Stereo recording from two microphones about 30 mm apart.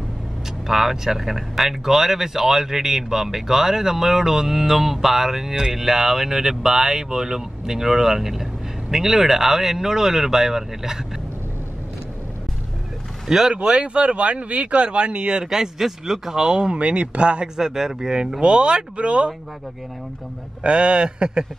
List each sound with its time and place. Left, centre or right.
0.7 s speech: centre
13.5 s speech: right
15.4 s speech: centre
16.7 s speech: right
17.6 s speech: centre
18.4 s speech: right
20.6 s speech: right